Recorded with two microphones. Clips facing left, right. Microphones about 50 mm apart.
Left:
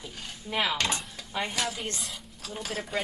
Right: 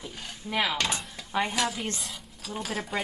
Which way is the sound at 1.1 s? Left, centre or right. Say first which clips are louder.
Right 4 dB; centre.